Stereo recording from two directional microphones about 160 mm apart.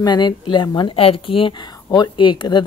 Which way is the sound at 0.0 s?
25° left (ahead or behind).